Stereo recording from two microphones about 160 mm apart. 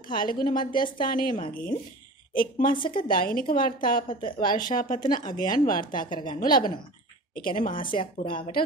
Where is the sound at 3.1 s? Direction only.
60° left (ahead or behind).